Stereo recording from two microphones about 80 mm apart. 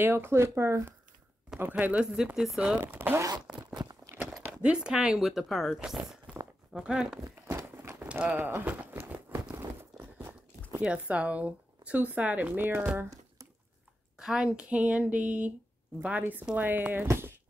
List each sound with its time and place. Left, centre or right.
0.0 s speech: right
1.6 s speech: right
2.8 s speech: right
3.2 s zipper: right
3.7 s horse: right
4.2 s speech: centre
5.8 s speech: centre
7.2 s speech: right
7.5 s horse: right
8.1 s horse: centre
8.4 s a sound: right
10.8 s speech: centre
14.1 s speech: centre; by 17.3 s right